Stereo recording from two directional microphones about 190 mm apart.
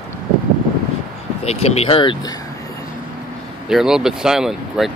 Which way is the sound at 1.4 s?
35° left (ahead or behind).